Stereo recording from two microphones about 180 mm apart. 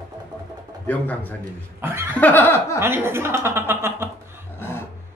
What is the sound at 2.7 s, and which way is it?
Speech, 15° right (ahead or behind).